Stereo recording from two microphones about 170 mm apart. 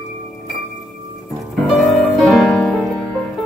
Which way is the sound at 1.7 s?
Centre (ahead or behind).